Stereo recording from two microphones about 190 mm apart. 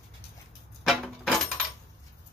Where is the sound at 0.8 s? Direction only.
Centre (ahead or behind).